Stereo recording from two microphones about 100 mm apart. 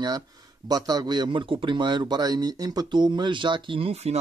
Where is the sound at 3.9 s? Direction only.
90° right.